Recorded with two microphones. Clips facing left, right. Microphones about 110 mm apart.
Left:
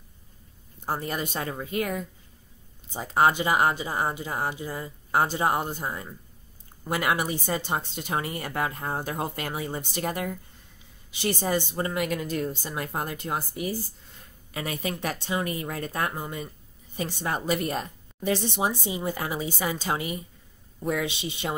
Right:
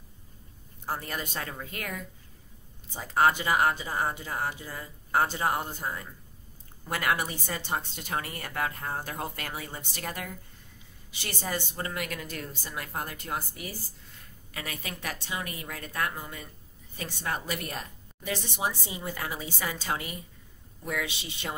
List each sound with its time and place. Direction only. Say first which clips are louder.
0.8 s a woman's voice: left 4 dB; 25° left (ahead or behind)